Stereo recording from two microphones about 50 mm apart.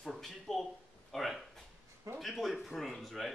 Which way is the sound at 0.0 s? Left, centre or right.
Centre.